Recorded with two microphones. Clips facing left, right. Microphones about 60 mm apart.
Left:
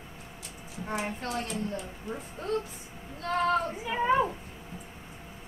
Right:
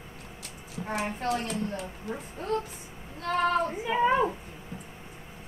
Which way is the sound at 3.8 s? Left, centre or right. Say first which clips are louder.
Right 2 dB; right.